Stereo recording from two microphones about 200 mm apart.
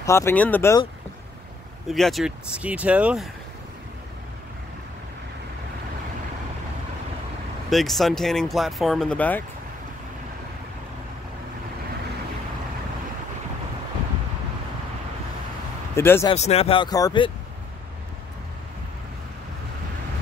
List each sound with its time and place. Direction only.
0.0 s speech: 15° left (ahead or behind)
1.9 s speech: centre (ahead or behind)
7.7 s speech: centre (ahead or behind)
16.0 s speech: 10° left (ahead or behind)
16.3 s speech: 30° left (ahead or behind)